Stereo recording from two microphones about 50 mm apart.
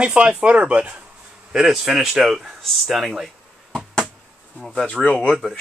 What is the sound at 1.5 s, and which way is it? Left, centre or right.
Speech, centre.